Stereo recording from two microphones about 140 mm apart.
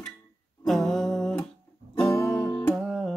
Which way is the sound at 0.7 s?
5° left (ahead or behind).